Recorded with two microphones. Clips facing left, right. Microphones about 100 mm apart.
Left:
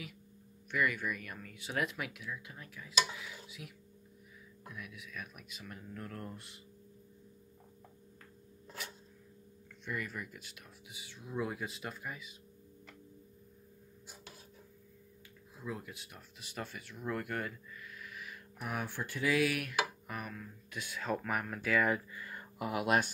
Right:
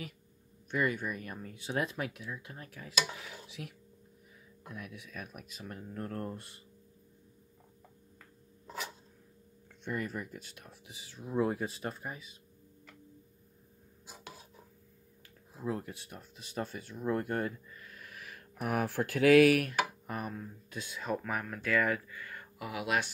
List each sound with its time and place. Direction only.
0.7 s speech: 35° right (ahead or behind)
2.5 s speech: 50° right (ahead or behind)
4.6 s speech: 40° right (ahead or behind)
9.8 s speech: 35° right (ahead or behind)
15.6 s speech: 45° right (ahead or behind)
16.2 s speech: 30° right (ahead or behind)
18.2 s speech: 60° right (ahead or behind)
19.6 s speech: 35° right (ahead or behind)
21.1 s speech: centre (ahead or behind)
21.8 s speech: 20° left (ahead or behind)
22.6 s speech: 40° left (ahead or behind)